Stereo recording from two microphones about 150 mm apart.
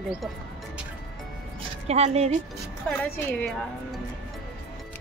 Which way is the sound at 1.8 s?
45° right (ahead or behind).